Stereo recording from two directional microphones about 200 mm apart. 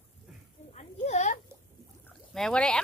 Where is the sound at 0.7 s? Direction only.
35° left (ahead or behind).